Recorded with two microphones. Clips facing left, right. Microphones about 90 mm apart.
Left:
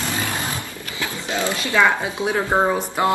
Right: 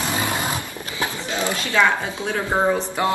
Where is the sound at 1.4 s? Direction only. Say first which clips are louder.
Left 1 dB; 20° left (ahead or behind).